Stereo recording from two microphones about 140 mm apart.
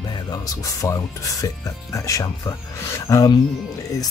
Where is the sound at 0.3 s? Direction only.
25° left (ahead or behind).